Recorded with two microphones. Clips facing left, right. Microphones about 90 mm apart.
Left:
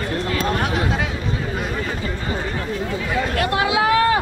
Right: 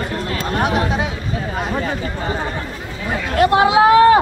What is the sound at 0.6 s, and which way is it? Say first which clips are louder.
Speech: right 4 dB; 20° right (ahead or behind).